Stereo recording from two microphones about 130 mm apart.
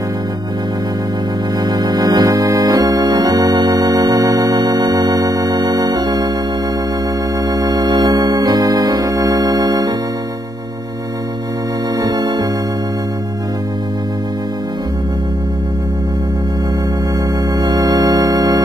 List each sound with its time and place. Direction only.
1.7 s organ: 30° right (ahead or behind)
7.5 s organ: 30° right (ahead or behind)
12.0 s organ: 30° right (ahead or behind)
17.6 s organ: 30° right (ahead or behind)